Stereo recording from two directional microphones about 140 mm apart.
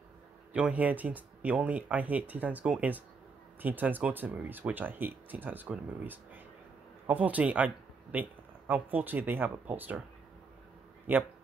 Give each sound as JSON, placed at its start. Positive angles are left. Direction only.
{"t": 0.5, "sound": "speech", "side_deg": -10}
{"t": 11.1, "sound": "speech", "side_deg": -15}